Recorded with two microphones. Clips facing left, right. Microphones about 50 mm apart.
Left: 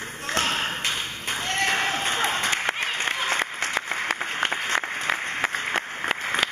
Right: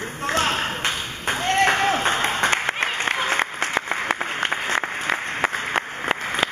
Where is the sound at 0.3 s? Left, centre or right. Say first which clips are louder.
Right 3 dB; right.